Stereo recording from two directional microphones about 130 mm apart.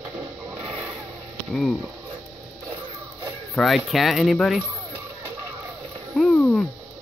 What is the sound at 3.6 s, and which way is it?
A man's voice, centre (ahead or behind).